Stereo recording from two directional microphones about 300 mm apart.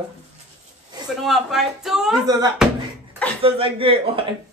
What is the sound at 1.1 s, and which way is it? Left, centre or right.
A man's voice, centre.